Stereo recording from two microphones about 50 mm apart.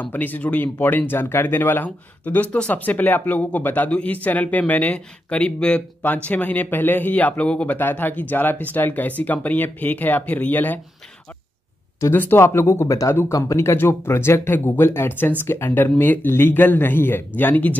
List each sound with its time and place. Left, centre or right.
0.0 s speech: left
12.1 s speech: left
12.4 s speech: left
13.5 s speech: left